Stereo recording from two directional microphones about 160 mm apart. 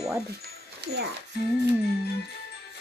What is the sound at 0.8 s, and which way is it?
Speech, 90° right.